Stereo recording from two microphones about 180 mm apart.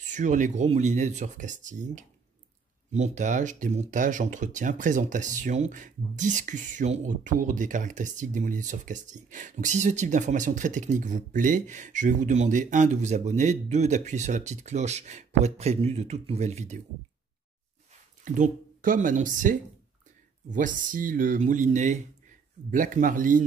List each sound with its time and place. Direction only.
0.0 s speech: 45° right (ahead or behind)
18.2 s speech: 45° right (ahead or behind)